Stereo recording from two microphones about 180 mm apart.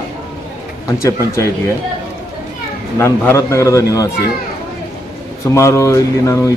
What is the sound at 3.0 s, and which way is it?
A man's voice, 15° left (ahead or behind).